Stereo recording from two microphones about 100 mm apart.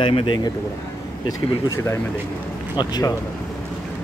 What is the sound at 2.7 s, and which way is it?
Speech, 45° left (ahead or behind).